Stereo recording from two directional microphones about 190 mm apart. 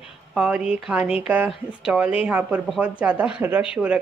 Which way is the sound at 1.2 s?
5° right (ahead or behind).